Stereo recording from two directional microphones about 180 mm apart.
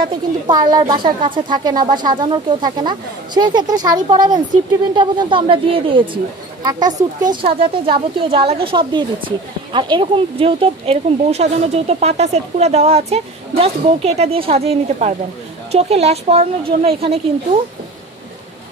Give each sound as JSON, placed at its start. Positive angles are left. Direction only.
{"t": 0.5, "sound": "a woman's voice", "side_deg": -20}